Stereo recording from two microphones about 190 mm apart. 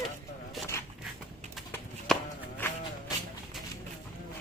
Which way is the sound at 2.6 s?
10° left (ahead or behind).